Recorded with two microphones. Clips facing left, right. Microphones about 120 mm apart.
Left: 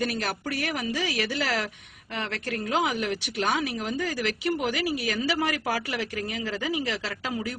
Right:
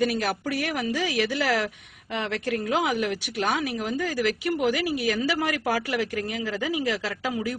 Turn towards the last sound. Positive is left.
turn(degrees=-10)  # may be behind; listen again after turning